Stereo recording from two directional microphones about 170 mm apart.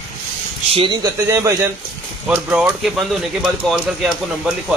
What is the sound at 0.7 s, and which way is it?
Speech, 25° right (ahead or behind).